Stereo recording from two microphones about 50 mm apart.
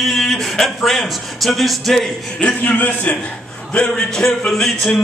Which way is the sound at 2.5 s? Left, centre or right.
Left.